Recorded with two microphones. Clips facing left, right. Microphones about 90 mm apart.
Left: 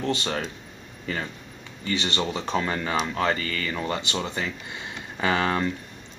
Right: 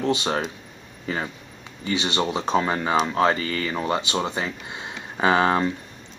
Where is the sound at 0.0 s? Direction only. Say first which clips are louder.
Right 4 dB; 20° right (ahead or behind).